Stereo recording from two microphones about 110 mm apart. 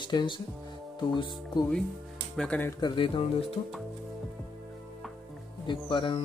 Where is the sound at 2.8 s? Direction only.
50° left (ahead or behind).